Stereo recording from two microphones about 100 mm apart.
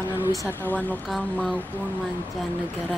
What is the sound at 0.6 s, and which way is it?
Speech, 15° left (ahead or behind).